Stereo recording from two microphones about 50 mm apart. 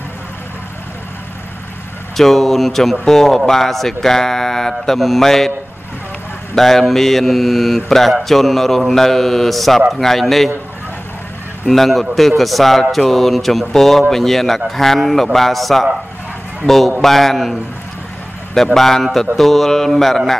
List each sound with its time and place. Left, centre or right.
2.1 s speech: centre
6.5 s mantra: centre
11.6 s mantra: centre
14.8 s speech: centre
15.3 s mantra: centre
18.5 s speech: centre